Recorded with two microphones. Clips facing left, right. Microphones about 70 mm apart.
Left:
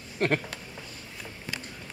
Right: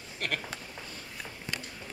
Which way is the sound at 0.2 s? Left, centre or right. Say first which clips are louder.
Left 9 dB; left.